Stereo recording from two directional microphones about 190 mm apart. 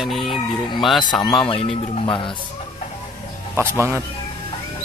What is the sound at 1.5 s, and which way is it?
Speech, 30° left (ahead or behind).